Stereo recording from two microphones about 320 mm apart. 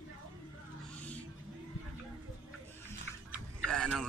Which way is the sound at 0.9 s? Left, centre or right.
Centre.